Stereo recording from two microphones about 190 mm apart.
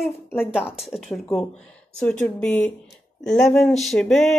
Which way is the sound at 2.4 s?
5° left (ahead or behind).